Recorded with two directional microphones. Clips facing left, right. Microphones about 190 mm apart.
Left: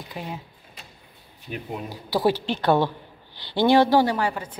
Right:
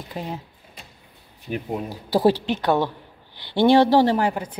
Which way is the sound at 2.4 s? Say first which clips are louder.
Even; 15° right (ahead or behind).